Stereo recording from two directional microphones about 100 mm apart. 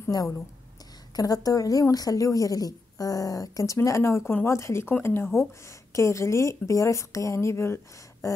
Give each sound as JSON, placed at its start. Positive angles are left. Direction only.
{"t": 0.0, "sound": "a woman's voice", "side_deg": 35}